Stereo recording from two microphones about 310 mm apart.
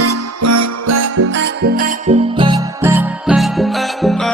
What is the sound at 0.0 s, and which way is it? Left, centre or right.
Music, right.